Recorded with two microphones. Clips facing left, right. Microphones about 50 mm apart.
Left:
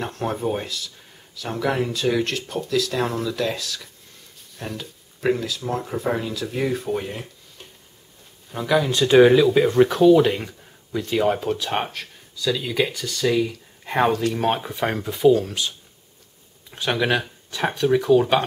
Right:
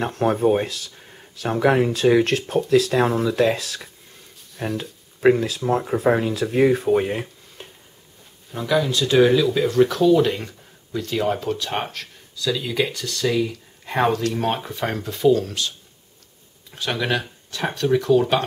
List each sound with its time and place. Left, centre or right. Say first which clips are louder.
0.0 s speech: right 6 dB; right
8.5 s speech: even; centre
8.9 s speech: left 4 dB; left
16.7 s speech: left 2 dB; centre